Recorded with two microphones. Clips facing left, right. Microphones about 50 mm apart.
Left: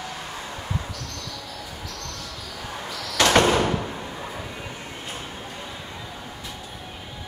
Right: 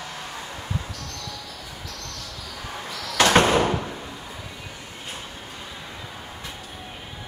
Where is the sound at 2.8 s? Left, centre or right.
Right.